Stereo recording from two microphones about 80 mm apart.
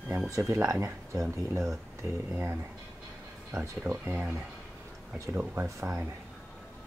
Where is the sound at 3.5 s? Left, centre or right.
Right.